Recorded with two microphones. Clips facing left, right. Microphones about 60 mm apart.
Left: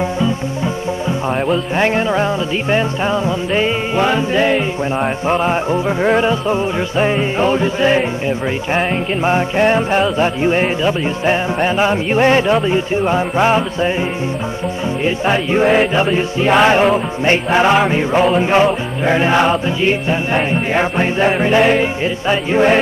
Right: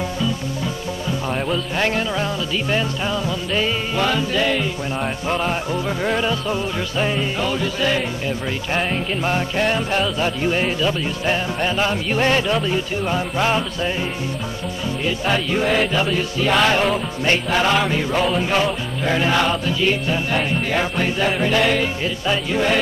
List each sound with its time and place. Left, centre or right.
1.8 s music: left
15.0 s music: left